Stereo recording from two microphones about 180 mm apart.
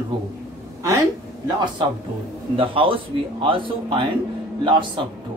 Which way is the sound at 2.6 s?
30° right (ahead or behind).